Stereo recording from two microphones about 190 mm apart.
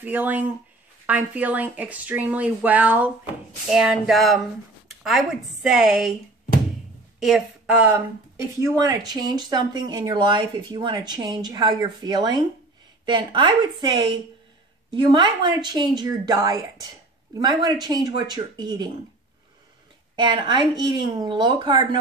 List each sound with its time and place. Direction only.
0.0 s a woman's voice: 10° right (ahead or behind)
7.2 s speech: centre (ahead or behind); by 18.9 s 20° right (ahead or behind)
20.2 s speech: 25° right (ahead or behind)